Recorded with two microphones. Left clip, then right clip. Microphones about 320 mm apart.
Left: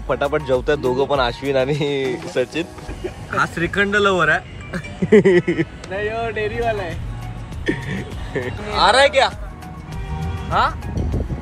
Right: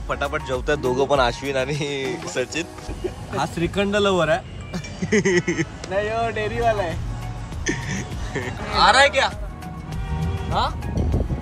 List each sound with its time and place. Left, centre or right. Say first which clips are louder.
0.1 s speech: left 6 dB; centre
5.6 s speech: left 1 dB; right
7.6 s speech: left 3 dB; centre
10.2 s music: left 5 dB; centre